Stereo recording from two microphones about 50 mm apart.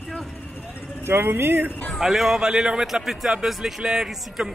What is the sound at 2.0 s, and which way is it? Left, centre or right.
Speech, centre.